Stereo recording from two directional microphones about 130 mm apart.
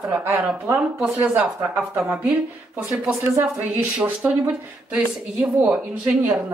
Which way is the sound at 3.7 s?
10° right (ahead or behind).